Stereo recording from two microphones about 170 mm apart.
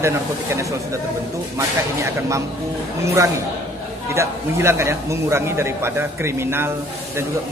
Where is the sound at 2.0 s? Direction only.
15° right (ahead or behind).